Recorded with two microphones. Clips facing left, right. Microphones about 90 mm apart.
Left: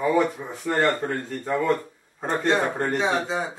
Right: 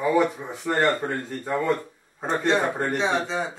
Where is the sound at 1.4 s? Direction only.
5° right (ahead or behind).